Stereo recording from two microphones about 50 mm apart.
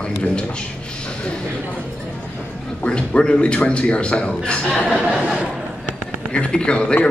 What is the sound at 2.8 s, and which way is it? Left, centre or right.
A man's voice, left.